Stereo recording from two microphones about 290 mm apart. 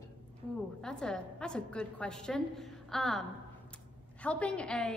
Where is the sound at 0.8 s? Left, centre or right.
Centre.